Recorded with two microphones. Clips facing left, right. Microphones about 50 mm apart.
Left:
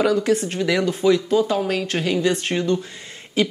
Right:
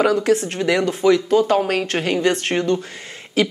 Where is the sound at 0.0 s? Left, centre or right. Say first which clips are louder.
Right 2 dB; right.